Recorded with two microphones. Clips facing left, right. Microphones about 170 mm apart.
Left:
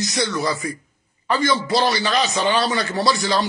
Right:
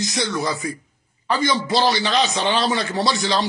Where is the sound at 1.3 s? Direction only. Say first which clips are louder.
Left 1 dB; 20° right (ahead or behind).